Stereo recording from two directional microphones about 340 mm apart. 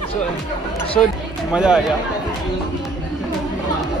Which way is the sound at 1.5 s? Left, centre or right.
Centre.